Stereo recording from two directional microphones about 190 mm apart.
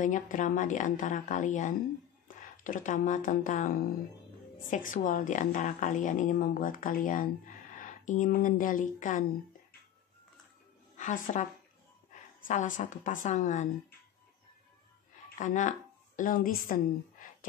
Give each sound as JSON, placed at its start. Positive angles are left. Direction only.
{"t": 0.0, "sound": "a woman's voice", "side_deg": 40}
{"t": 11.0, "sound": "a woman's voice", "side_deg": 40}
{"t": 15.3, "sound": "speech", "side_deg": 40}